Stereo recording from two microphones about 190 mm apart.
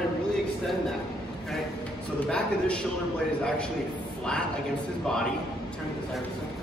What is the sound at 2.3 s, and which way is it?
Speech, 5° left (ahead or behind).